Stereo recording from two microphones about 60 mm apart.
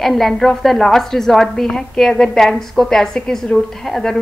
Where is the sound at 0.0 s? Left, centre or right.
Centre.